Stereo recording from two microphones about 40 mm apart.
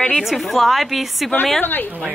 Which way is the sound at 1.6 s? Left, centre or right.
Left.